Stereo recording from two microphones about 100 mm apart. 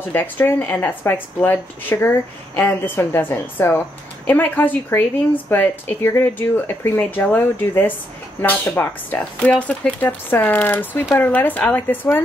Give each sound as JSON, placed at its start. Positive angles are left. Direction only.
{"t": 0.1, "sound": "speech", "side_deg": 20}